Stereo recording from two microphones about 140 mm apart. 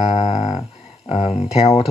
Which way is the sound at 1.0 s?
45° left (ahead or behind).